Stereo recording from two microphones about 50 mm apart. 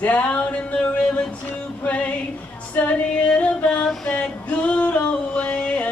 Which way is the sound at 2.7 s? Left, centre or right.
Left.